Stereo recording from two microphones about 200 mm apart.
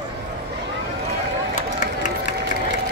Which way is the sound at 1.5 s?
40° left (ahead or behind).